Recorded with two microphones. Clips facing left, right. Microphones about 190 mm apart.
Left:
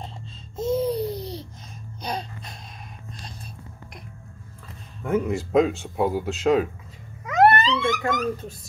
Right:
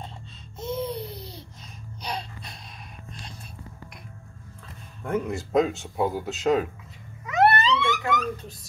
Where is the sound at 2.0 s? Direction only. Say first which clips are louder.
Left 3 dB; 45° left (ahead or behind).